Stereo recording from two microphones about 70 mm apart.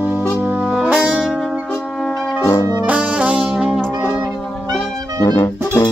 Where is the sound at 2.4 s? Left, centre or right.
Left.